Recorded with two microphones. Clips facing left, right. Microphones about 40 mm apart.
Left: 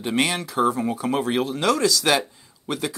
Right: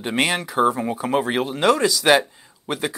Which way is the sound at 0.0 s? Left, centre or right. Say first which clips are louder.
Right 1 dB; right.